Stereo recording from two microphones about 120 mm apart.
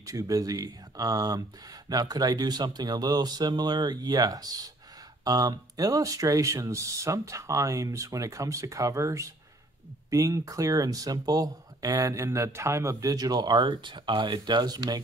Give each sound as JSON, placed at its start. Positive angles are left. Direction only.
{"t": 0.0, "sound": "speech", "side_deg": -30}